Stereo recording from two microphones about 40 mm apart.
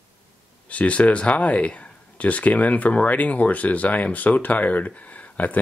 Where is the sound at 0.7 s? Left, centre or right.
Left.